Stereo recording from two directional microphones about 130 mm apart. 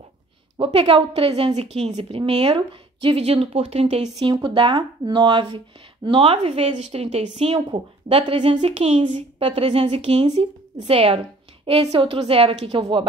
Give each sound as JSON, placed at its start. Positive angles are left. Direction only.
{"t": 0.6, "sound": "a woman's voice", "side_deg": -45}
{"t": 4.2, "sound": "a woman's voice", "side_deg": -40}
{"t": 8.6, "sound": "a woman's voice", "side_deg": -50}
{"t": 9.0, "sound": "speech", "side_deg": -35}
{"t": 9.5, "sound": "a woman's voice", "side_deg": -50}